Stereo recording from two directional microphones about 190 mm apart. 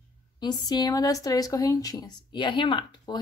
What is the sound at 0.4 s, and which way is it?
A woman's voice, 20° left (ahead or behind).